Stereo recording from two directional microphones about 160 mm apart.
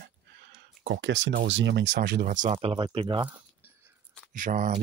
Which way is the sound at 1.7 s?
90° right.